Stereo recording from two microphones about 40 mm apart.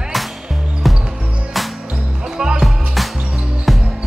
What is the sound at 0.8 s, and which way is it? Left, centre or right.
Basketball bounce, centre.